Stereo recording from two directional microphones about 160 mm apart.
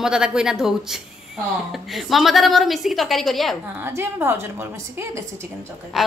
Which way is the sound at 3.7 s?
15° right (ahead or behind).